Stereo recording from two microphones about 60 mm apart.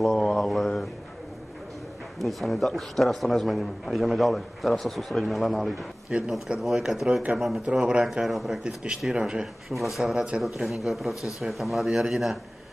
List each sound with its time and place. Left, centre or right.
0.0 s a sound: centre
2.1 s a man's voice: centre
6.0 s speech: centre
6.6 s a man's voice: centre
7.6 s speech: centre
8.0 s a man's voice: centre
8.6 s speech: centre
9.7 s a man's voice: centre